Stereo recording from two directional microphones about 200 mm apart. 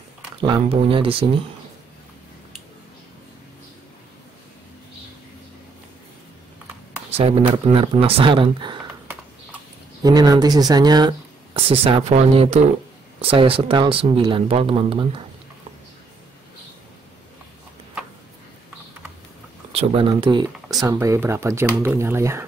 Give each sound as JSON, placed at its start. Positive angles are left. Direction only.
{"t": 0.4, "sound": "speech", "side_deg": -30}
{"t": 7.1, "sound": "a sound", "side_deg": -30}
{"t": 7.5, "sound": "speech", "side_deg": -25}
{"t": 9.0, "sound": "a sound", "side_deg": -10}
{"t": 10.0, "sound": "speech", "side_deg": -20}
{"t": 19.7, "sound": "speech", "side_deg": -30}